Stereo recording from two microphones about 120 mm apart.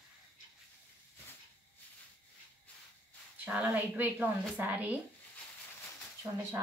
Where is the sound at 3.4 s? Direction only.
10° right (ahead or behind).